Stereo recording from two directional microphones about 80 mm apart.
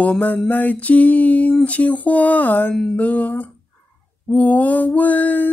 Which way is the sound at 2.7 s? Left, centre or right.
Centre.